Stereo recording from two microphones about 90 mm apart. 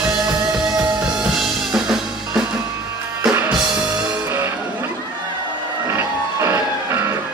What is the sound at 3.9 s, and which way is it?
Music, 45° right (ahead or behind).